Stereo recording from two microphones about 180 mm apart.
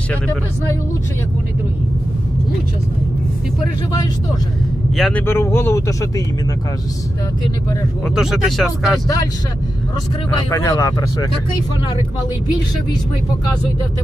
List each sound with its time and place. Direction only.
0.1 s a man's voice: 10° left (ahead or behind)
4.9 s speech: centre (ahead or behind)
5.2 s a man's voice: 15° left (ahead or behind)
8.1 s speech: centre (ahead or behind)
9.0 s speech: 20° left (ahead or behind)
10.5 s speech: 20° left (ahead or behind)